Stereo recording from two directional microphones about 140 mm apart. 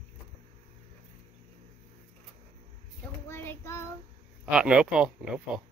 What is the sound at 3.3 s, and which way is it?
Child singing, 15° left (ahead or behind).